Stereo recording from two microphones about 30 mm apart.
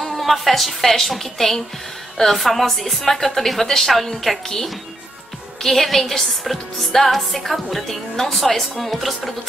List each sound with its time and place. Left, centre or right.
0.0 s a woman's voice: centre
5.6 s a woman's voice: centre